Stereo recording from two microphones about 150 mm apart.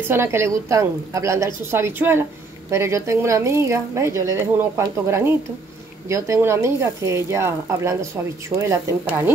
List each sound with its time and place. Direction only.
0.1 s a woman's voice: 15° right (ahead or behind)